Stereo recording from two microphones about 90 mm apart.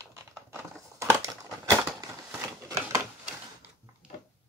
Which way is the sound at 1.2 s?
40° right (ahead or behind).